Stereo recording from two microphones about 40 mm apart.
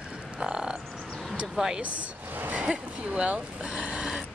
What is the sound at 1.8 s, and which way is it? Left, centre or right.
Speech, right.